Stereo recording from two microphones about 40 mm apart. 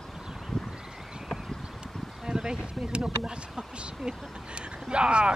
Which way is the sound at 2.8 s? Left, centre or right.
Right.